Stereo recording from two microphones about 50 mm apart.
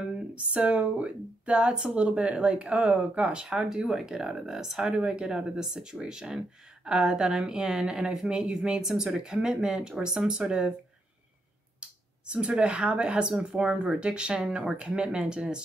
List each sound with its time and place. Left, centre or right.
0.0 s speech: right
3.4 s speech: centre
11.8 s speech: right